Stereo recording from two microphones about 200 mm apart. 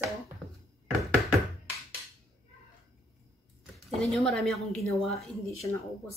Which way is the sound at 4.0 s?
Centre (ahead or behind).